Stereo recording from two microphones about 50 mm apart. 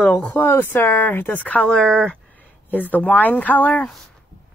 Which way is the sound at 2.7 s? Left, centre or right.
Left.